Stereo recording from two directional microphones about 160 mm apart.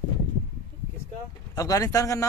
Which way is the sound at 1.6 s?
20° left (ahead or behind).